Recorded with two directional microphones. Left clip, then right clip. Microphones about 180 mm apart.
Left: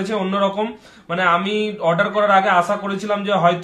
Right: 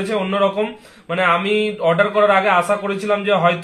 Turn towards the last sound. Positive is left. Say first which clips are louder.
# right 1 dB
turn(degrees=-15)  # may be behind; listen again after turning